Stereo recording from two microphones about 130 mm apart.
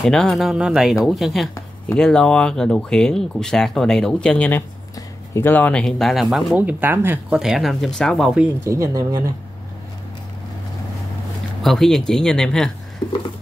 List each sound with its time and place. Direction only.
0.0 s speech: 5° left (ahead or behind)
6.5 s speech: 10° right (ahead or behind)
7.3 s speech: centre (ahead or behind)
8.6 s speech: 25° right (ahead or behind)
11.6 s speech: centre (ahead or behind)